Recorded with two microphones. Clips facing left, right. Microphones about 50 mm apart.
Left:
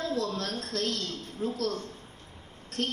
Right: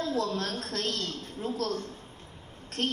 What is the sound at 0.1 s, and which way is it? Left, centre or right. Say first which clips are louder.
A woman's voice: right 1 dB; right.